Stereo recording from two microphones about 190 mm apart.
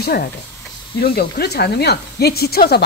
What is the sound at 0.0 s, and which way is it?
Speech, 55° left (ahead or behind).